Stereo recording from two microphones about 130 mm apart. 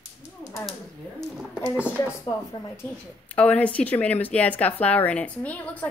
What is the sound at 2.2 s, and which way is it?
Speech, 20° left (ahead or behind).